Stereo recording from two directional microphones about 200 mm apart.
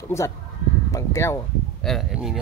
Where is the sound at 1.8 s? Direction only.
Centre (ahead or behind).